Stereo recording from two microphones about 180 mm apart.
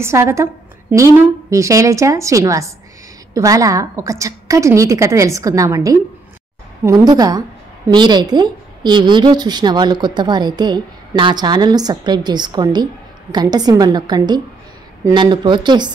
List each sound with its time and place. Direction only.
0.0 s a woman's voice: 15° right (ahead or behind)